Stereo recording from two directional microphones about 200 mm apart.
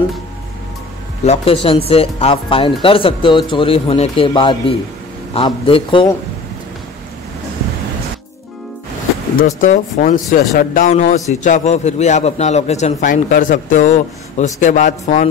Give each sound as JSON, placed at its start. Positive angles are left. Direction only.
{"t": 1.2, "sound": "speech", "side_deg": 30}
{"t": 9.6, "sound": "a man's voice", "side_deg": 40}